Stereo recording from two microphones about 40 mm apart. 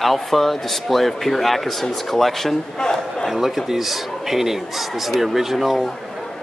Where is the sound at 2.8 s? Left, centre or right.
Centre.